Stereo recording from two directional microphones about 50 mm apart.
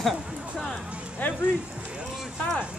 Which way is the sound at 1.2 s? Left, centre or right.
Left.